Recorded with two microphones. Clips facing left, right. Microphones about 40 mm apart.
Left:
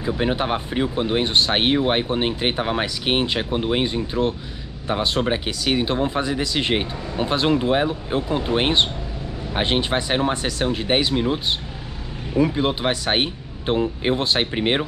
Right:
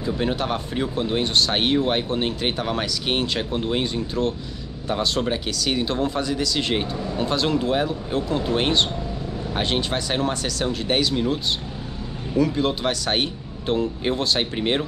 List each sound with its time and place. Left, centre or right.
0.0 s speech: left
12.4 s speech: left